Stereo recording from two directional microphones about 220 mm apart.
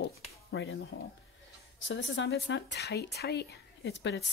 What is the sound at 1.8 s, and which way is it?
A woman's voice, 60° left (ahead or behind).